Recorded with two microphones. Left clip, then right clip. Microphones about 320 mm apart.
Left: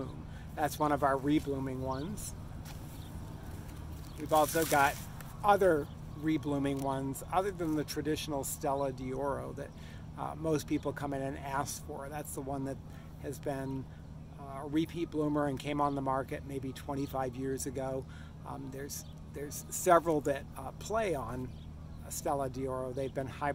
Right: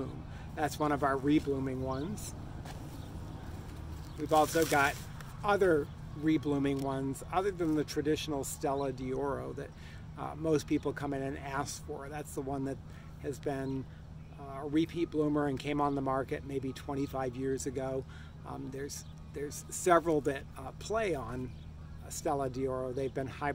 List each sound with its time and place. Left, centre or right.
0.6 s speech: centre
4.2 s speech: centre